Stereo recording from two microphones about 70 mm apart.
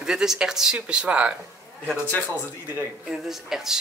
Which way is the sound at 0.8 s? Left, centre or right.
Centre.